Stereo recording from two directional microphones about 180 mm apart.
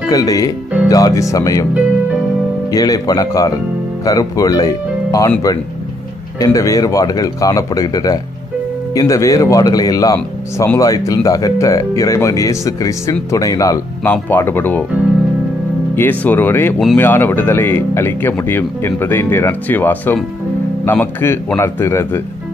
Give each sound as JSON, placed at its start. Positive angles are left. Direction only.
{"t": 0.1, "sound": "speech", "side_deg": 20}
{"t": 2.7, "sound": "speech", "side_deg": 20}
{"t": 6.4, "sound": "speech", "side_deg": 20}
{"t": 16.0, "sound": "speech", "side_deg": 10}